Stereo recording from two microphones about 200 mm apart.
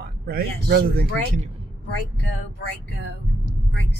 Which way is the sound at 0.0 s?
50° right (ahead or behind).